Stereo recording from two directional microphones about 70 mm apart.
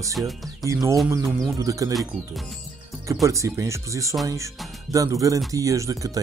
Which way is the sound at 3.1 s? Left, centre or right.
Right.